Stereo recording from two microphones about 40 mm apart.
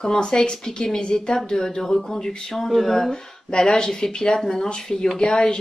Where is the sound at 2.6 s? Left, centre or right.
Centre.